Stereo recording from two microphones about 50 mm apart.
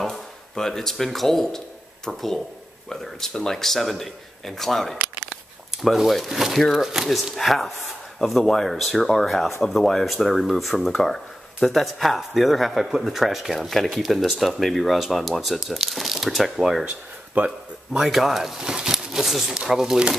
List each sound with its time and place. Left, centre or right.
0.0 s speech: centre
16.8 s a sound: right
17.9 s speech: centre